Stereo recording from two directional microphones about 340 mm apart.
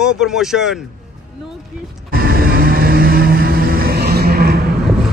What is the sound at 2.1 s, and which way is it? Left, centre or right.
Music, right.